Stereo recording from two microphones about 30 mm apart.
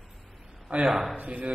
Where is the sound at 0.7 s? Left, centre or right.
Right.